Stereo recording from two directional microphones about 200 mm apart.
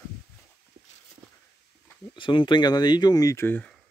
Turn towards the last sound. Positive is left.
turn(degrees=10)  # may be behind; listen again after turning